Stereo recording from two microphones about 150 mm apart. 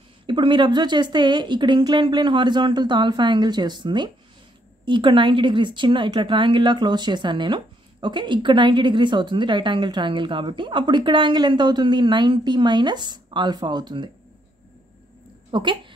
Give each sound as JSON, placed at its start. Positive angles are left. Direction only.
{"t": 0.3, "sound": "a woman's voice", "side_deg": -30}
{"t": 15.5, "sound": "a woman's voice", "side_deg": -30}